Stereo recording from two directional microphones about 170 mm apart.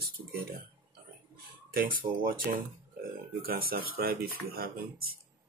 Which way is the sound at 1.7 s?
55° right (ahead or behind).